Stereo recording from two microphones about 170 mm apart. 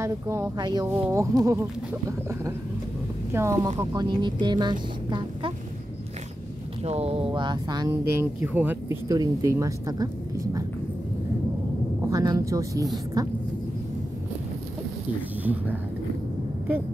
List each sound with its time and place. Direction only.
0.0 s speech: 15° right (ahead or behind)
6.8 s speech: 35° right (ahead or behind); by 10.6 s 20° right (ahead or behind)
12.1 s speech: 20° right (ahead or behind)